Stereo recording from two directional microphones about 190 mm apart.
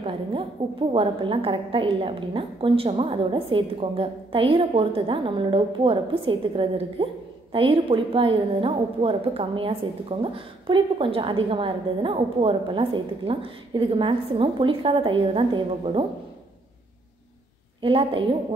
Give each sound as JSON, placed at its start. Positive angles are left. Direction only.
{"t": 0.0, "sound": "a sound", "side_deg": -25}
{"t": 0.9, "sound": "a woman's voice", "side_deg": -30}
{"t": 17.8, "sound": "a woman's voice", "side_deg": -30}